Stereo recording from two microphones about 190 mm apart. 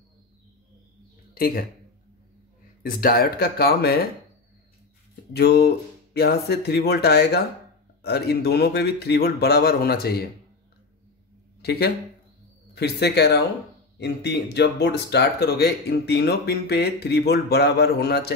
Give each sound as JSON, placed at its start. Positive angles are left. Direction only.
{"t": 1.3, "sound": "speech", "side_deg": 50}
{"t": 2.8, "sound": "speech", "side_deg": 50}
{"t": 5.3, "sound": "speech", "side_deg": 55}
{"t": 11.6, "sound": "speech", "side_deg": 60}